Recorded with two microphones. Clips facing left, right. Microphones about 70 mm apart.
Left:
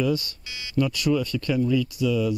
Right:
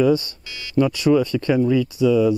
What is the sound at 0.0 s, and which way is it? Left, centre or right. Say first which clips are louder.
Speech: right 7 dB; right.